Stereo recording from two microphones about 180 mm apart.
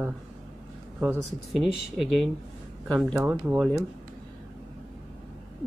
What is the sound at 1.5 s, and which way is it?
Speech, centre (ahead or behind).